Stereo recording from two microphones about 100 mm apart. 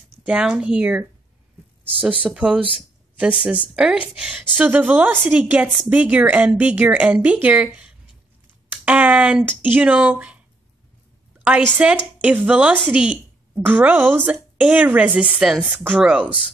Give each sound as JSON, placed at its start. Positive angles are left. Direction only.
{"t": 0.2, "sound": "a woman's voice", "side_deg": -10}
{"t": 2.2, "sound": "a woman's voice", "side_deg": -15}
{"t": 11.3, "sound": "a sound", "side_deg": -15}
{"t": 11.7, "sound": "a woman's voice", "side_deg": -10}